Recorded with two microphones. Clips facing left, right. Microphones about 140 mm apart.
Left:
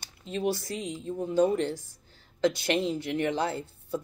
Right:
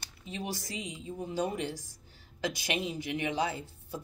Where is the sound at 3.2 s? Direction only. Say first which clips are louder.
Left 3 dB; 15° right (ahead or behind).